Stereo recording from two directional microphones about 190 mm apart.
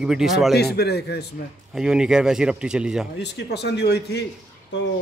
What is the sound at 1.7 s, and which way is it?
Speech, 5° right (ahead or behind).